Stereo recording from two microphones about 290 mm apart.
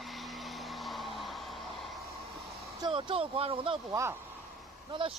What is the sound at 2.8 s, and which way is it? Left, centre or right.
Speech, centre.